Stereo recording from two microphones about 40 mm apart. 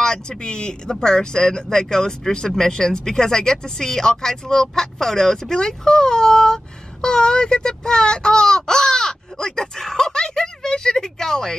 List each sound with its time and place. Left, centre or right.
0.0 s speech: centre